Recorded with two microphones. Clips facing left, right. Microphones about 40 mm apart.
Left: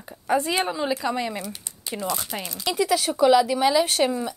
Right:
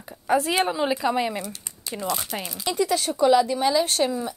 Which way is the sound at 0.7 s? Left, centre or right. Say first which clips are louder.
Right 2 dB; centre.